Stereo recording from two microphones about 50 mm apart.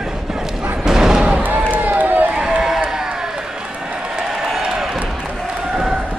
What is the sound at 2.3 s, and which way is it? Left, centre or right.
Run, centre.